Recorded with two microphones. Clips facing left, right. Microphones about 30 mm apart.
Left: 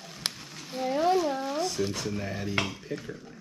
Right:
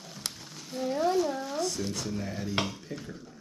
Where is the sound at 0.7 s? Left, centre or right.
Left.